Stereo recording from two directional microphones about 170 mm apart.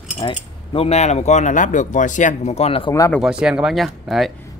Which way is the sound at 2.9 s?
20° left (ahead or behind).